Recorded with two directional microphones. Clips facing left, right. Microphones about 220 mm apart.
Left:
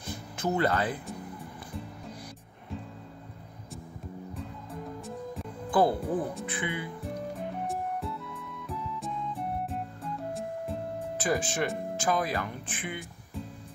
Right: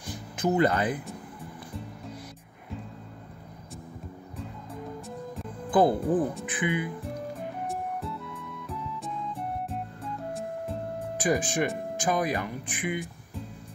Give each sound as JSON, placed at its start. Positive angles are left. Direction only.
{"t": 0.0, "sound": "music", "side_deg": -15}
{"t": 5.0, "sound": "music", "side_deg": 0}
{"t": 5.7, "sound": "speech", "side_deg": -20}
{"t": 7.6, "sound": "music", "side_deg": 0}
{"t": 11.1, "sound": "speech", "side_deg": -15}